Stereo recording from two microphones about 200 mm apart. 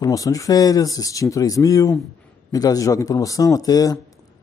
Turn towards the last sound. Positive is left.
turn(degrees=20)  # may be behind; listen again after turning